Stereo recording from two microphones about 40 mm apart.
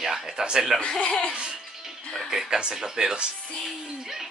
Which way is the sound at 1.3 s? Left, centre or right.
Right.